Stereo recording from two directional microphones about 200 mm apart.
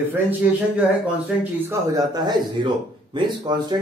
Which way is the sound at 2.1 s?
20° right (ahead or behind).